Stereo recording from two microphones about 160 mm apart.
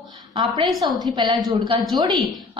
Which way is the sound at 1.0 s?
25° right (ahead or behind).